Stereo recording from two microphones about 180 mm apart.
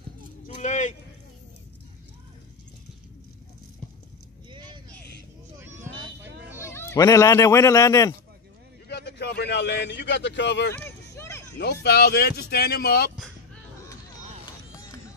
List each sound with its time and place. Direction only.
0.6 s a sound: 40° left (ahead or behind)
4.5 s vehicle: 25° right (ahead or behind)
5.6 s vehicle: 10° right (ahead or behind)
6.6 s speech: 15° left (ahead or behind)
8.8 s a man's voice: 65° left (ahead or behind)
10.7 s a sound: 15° left (ahead or behind)
11.5 s speech: 65° left (ahead or behind)